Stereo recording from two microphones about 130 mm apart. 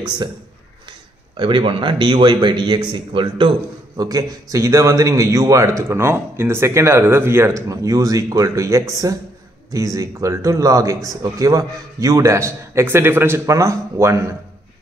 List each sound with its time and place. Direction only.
1.3 s a man's voice: 40° right (ahead or behind); by 14.2 s 20° right (ahead or behind)